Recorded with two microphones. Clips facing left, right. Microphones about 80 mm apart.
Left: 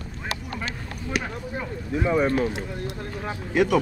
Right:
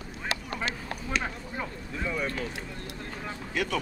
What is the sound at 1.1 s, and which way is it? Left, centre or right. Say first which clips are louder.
Speech: left 4 dB; centre.